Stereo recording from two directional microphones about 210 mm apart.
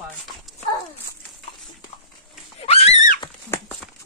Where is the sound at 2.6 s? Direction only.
30° left (ahead or behind).